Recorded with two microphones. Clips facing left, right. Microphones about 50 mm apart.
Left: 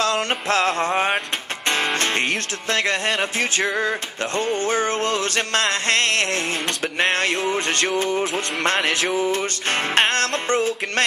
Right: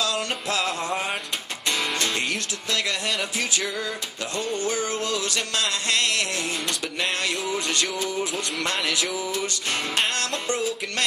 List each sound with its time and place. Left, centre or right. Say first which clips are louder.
0.5 s music: left 7 dB; left
1.7 s speech: left 5 dB; left
4.6 s music: left 5 dB; left